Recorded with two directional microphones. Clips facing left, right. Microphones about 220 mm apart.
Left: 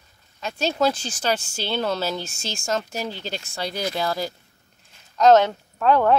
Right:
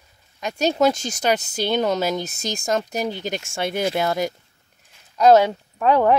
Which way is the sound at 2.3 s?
40° right (ahead or behind).